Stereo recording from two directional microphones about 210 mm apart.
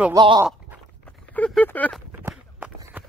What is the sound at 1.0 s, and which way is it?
Clip-clop, 5° left (ahead or behind).